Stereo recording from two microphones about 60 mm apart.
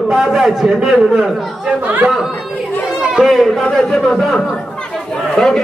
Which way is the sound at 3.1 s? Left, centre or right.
Centre.